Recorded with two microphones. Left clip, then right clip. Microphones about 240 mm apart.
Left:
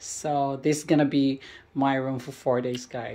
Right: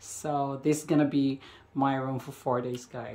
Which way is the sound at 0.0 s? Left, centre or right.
Centre.